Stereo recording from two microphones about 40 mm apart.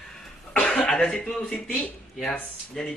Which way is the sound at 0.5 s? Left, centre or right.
Left.